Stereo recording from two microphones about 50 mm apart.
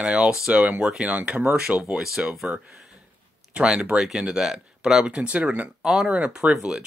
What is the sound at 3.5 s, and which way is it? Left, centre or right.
Speech, right.